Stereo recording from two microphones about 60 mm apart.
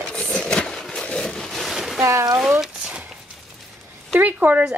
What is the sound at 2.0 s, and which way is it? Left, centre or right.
Speech, right.